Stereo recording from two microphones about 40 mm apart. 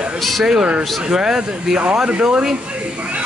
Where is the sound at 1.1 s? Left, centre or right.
Centre.